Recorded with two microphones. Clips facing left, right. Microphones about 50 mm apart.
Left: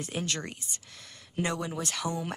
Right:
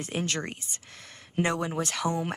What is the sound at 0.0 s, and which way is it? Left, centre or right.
Speech, right.